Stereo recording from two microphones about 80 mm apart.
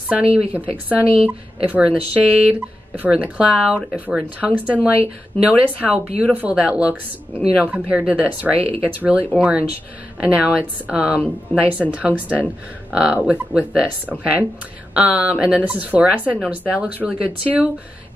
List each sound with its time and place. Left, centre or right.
0.1 s a woman's voice: centre